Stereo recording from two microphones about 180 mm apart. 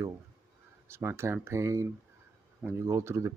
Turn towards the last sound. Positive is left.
turn(degrees=-15)  # may be behind; listen again after turning